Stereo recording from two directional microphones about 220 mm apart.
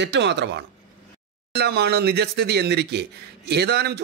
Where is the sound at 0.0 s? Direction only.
50° right (ahead or behind).